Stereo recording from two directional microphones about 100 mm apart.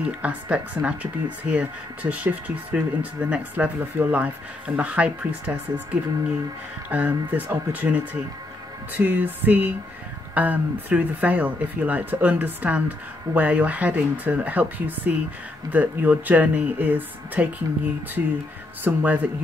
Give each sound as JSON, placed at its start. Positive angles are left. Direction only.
{"t": 0.0, "sound": "speech", "side_deg": -15}